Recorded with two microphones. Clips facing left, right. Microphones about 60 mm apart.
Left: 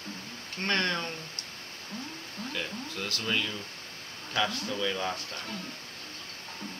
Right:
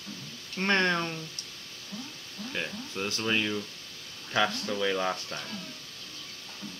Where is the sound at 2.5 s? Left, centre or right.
Right.